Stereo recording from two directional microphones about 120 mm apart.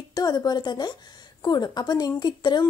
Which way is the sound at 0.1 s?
35° left (ahead or behind).